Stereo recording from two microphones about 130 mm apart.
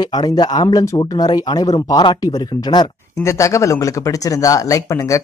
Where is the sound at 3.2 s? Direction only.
25° left (ahead or behind).